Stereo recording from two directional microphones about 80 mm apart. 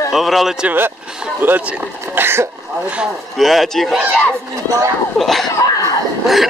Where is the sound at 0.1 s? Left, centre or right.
Centre.